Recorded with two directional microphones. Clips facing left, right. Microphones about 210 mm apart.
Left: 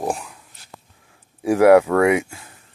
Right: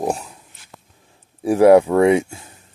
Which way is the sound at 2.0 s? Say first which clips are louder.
Right 3 dB; 30° right (ahead or behind).